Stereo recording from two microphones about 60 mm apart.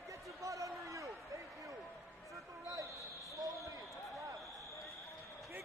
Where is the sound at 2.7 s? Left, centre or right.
Right.